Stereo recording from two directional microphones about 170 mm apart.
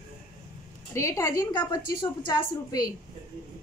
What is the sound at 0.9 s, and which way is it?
A woman's voice, 15° left (ahead or behind).